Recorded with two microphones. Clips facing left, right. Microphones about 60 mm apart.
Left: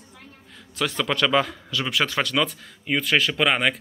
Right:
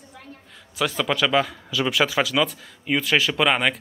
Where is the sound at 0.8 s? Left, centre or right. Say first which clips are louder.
Right 1 dB; centre.